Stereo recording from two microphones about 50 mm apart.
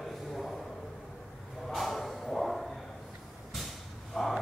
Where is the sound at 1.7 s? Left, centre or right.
Centre.